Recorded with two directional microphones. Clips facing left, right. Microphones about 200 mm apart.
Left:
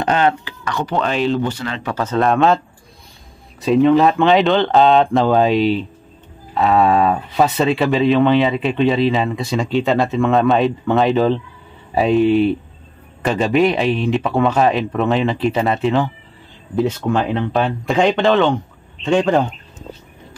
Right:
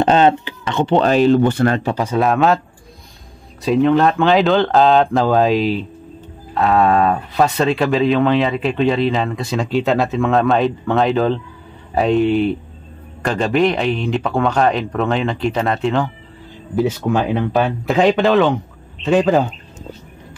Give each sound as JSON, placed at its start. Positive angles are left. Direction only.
{"t": 0.0, "sound": "a sound", "side_deg": -25}
{"t": 1.0, "sound": "speech", "side_deg": -40}
{"t": 2.0, "sound": "speech", "side_deg": -10}
{"t": 3.6, "sound": "speech", "side_deg": 0}